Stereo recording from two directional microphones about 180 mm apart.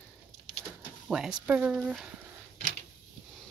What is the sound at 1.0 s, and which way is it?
Speech, 5° right (ahead or behind).